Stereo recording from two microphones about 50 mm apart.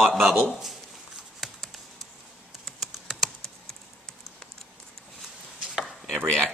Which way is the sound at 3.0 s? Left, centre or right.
Centre.